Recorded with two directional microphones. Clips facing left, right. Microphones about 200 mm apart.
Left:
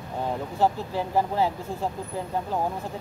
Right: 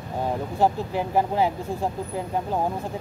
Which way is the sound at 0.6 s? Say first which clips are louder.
Right 2 dB; 15° right (ahead or behind).